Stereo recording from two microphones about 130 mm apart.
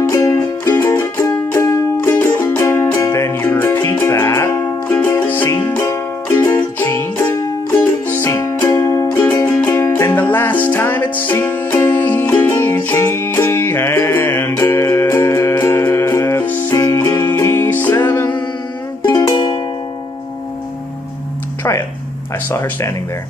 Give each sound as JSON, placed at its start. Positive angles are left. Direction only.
{"t": 0.1, "sound": "music", "side_deg": 20}
{"t": 19.3, "sound": "music", "side_deg": 45}
{"t": 22.5, "sound": "a sound", "side_deg": 20}